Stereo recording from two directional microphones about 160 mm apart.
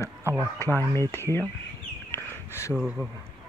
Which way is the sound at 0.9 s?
15° left (ahead or behind).